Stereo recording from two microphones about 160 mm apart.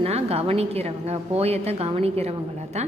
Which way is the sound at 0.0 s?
40° right (ahead or behind).